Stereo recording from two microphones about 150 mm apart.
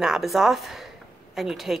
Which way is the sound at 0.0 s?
Centre (ahead or behind).